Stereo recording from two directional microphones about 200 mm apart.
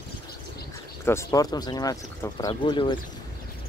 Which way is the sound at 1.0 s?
15° left (ahead or behind).